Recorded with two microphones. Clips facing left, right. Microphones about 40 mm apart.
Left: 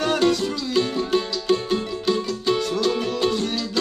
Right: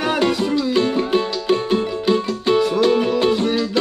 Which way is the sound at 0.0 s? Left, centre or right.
Centre.